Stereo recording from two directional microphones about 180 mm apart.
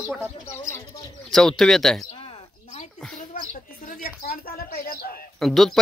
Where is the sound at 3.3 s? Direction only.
50° left (ahead or behind).